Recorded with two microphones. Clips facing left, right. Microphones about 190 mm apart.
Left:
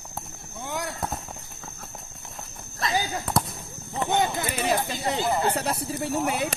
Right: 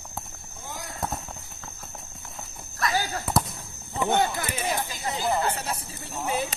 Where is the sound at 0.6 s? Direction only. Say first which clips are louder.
Left 7 dB; 70° left (ahead or behind).